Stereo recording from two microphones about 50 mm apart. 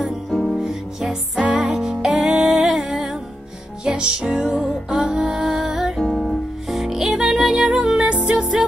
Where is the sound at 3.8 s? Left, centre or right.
Centre.